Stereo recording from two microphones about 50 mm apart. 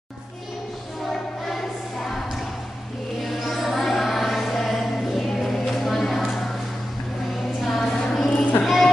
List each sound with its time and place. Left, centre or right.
1.0 s music: centre
3.3 s choir: centre
7.6 s child singing: centre
8.6 s a sound: centre